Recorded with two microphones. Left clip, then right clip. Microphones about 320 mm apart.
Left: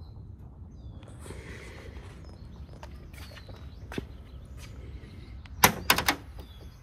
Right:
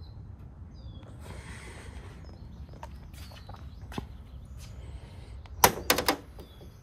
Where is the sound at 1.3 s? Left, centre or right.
Centre.